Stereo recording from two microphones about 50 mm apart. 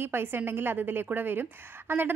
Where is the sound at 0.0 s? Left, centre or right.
Right.